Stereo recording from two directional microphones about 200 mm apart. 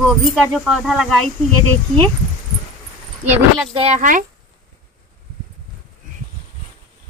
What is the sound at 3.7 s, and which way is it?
Speech, 30° right (ahead or behind).